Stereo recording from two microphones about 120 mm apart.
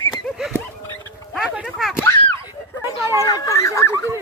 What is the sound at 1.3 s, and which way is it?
Oink, 10° right (ahead or behind).